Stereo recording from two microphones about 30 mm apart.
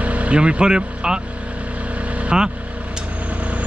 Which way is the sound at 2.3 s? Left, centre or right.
Right.